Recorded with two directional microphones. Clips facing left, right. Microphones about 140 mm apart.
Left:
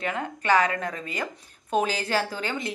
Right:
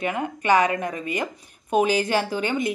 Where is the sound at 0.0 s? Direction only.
15° right (ahead or behind).